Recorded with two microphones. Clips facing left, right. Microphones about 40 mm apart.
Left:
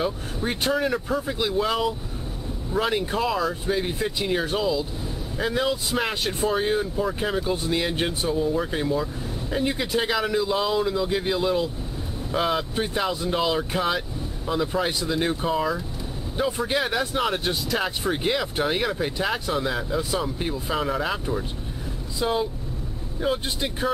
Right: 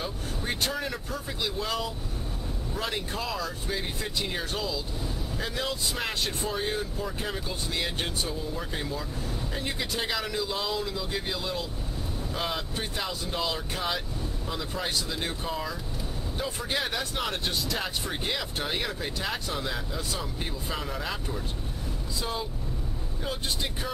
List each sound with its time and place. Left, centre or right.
0.0 s speech: centre
23.2 s speech: centre